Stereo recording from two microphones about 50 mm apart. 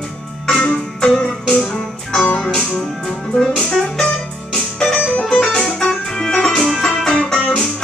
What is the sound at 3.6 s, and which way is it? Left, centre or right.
Music, centre.